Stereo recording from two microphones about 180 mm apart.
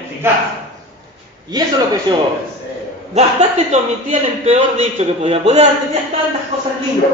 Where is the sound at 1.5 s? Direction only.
20° right (ahead or behind).